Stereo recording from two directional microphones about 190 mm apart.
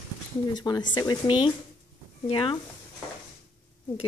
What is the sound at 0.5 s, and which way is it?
Speech, 20° left (ahead or behind).